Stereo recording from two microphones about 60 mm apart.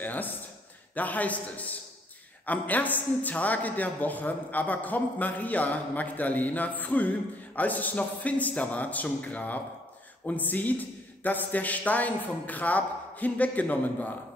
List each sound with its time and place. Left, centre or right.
0.0 s a man's voice: left